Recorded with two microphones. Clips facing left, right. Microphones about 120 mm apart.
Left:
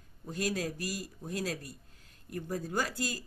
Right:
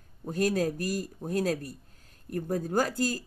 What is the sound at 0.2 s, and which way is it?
Speech, 50° right (ahead or behind).